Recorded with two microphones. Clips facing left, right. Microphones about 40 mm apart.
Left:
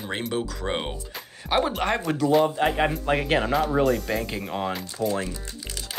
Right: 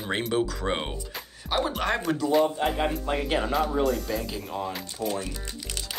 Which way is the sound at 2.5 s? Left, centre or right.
Left.